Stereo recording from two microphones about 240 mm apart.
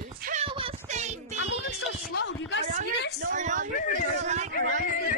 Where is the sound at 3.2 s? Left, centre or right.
Right.